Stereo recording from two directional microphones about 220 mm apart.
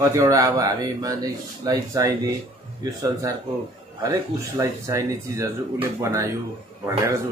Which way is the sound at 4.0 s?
15° right (ahead or behind).